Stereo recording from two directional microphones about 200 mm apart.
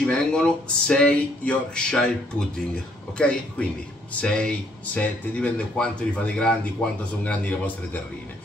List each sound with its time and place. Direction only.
0.0 s a man's voice: 5° left (ahead or behind)